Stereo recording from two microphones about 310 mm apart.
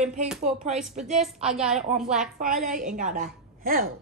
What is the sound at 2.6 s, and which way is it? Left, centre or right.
A woman's voice, right.